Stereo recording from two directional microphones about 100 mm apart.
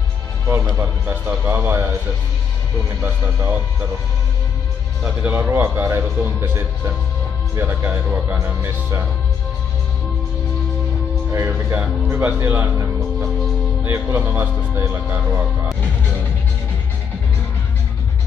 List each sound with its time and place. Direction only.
0.7 s speech: 20° right (ahead or behind)
3.0 s speech: 20° right (ahead or behind)
5.0 s speech: 20° right (ahead or behind)
11.3 s speech: 20° right (ahead or behind)